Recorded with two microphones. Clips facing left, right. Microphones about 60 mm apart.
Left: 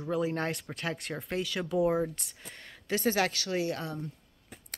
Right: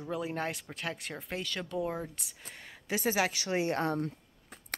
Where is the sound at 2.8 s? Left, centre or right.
Centre.